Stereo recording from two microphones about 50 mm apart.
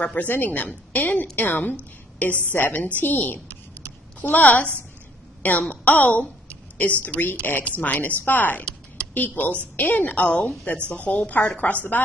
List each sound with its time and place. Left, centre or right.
0.0 s a woman's voice: left